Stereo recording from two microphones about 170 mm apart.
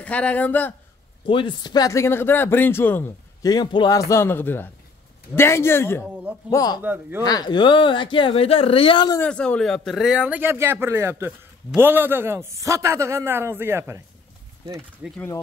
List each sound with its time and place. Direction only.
0.0 s speech: 10° left (ahead or behind)
1.2 s speech: 30° left (ahead or behind); by 3.5 s 10° left (ahead or behind)
3.5 s speech: 25° left (ahead or behind)
6.8 s speech: 10° right (ahead or behind)
7.2 s speech: 25° left (ahead or behind)
9.2 s speech: 5° left (ahead or behind); by 15.2 s 10° right (ahead or behind)